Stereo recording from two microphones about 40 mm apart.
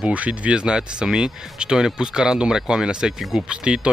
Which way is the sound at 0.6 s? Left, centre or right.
Centre.